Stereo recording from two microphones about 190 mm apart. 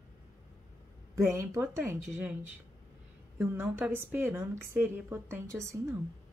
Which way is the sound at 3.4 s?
10° right (ahead or behind).